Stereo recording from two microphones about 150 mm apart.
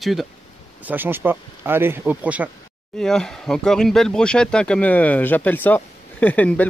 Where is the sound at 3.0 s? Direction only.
5° left (ahead or behind).